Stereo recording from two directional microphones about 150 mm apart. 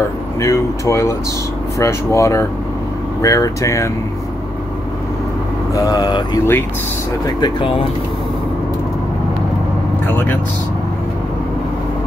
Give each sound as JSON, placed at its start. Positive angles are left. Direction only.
{"t": 0.4, "sound": "speech", "side_deg": 20}
{"t": 5.8, "sound": "speech", "side_deg": 25}